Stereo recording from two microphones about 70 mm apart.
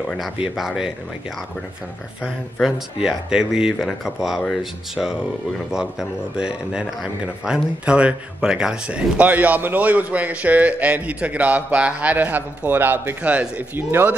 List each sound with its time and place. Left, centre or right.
0.2 s speech: centre
2.6 s speech: centre
5.7 s a man's voice: centre; by 14.1 s right